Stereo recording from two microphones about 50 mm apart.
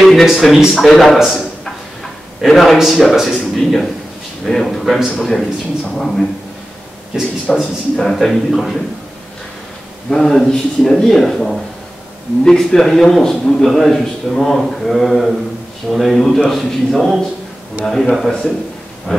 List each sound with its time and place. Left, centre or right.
0.0 s speech: centre
0.7 s a man's voice: centre
7.5 s a man's voice: centre
10.0 s a man's voice: centre
19.1 s a sound: centre